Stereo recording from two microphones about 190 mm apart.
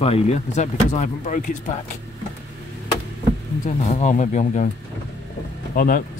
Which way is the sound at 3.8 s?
40° left (ahead or behind).